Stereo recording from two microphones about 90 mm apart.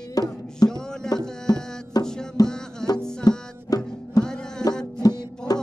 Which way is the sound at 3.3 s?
45° left (ahead or behind).